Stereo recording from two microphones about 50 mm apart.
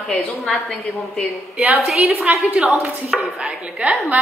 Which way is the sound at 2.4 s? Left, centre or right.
Right.